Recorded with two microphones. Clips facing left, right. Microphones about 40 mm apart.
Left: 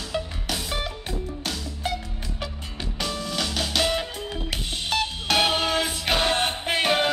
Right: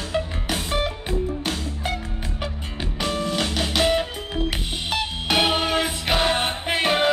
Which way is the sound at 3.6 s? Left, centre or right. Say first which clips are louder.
Right 4 dB; centre.